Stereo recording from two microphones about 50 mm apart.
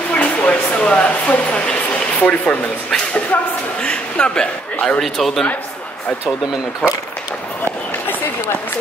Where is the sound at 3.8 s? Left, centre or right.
Left.